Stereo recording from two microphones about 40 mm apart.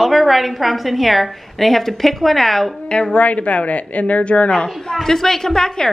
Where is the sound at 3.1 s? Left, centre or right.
Left.